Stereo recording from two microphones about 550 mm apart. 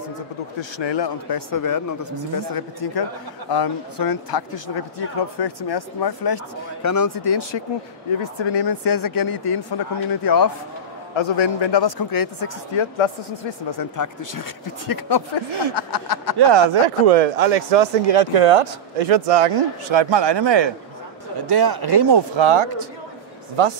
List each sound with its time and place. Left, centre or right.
0.6 s speech: left
7.2 s speech: left
8.6 s speech: left
11.1 s speech: left
12.7 s speech: left
13.7 s speech: left
16.3 s speech: right
17.1 s speech: right